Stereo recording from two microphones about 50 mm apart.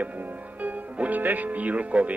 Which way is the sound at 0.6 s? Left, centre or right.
Right.